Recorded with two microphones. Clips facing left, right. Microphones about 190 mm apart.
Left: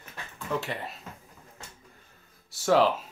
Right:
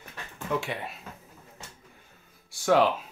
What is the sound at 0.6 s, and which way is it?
Speech, 5° right (ahead or behind).